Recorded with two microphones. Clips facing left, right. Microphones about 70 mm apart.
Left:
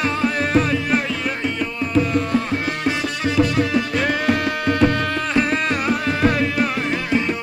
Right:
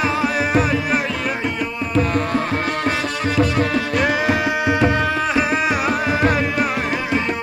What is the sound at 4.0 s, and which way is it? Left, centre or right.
Music, centre.